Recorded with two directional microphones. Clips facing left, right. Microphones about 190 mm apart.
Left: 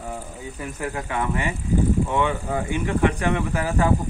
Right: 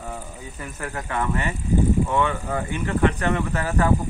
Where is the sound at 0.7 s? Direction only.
15° left (ahead or behind).